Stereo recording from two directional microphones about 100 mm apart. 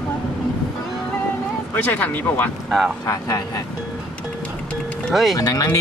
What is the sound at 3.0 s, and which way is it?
Speech, 35° left (ahead or behind).